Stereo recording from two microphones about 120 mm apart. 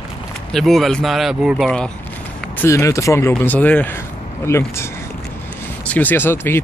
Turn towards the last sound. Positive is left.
turn(degrees=20)  # may be behind; listen again after turning